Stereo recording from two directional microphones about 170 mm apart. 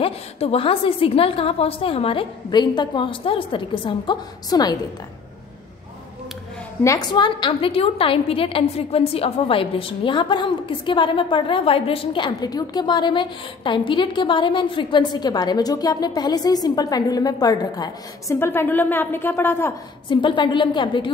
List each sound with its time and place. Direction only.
0.0 s a woman's voice: 35° left (ahead or behind)
6.8 s a woman's voice: 20° left (ahead or behind)
20.1 s a woman's voice: 30° left (ahead or behind)